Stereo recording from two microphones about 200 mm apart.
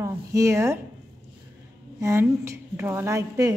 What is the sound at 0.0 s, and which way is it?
Speech, 15° right (ahead or behind).